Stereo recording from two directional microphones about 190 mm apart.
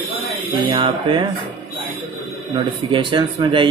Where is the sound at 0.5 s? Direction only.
30° right (ahead or behind).